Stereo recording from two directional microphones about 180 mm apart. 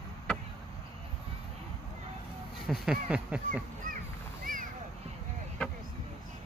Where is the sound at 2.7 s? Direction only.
5° right (ahead or behind).